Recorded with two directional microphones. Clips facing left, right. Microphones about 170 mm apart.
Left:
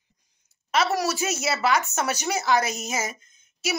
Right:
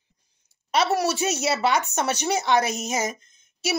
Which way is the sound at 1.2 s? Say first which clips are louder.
Right 3 dB; 35° right (ahead or behind).